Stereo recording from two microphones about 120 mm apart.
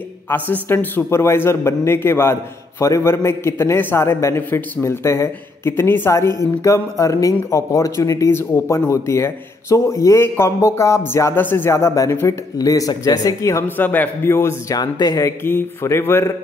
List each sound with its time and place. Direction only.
0.3 s speech: 15° left (ahead or behind)
14.8 s speech: 35° left (ahead or behind)